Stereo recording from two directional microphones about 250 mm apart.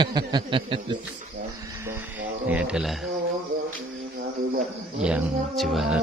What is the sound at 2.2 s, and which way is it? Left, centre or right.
Speech, centre.